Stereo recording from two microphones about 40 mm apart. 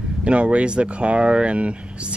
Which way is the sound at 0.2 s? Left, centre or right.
Right.